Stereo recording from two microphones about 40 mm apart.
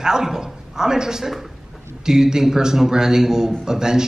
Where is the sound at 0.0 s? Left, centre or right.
Centre.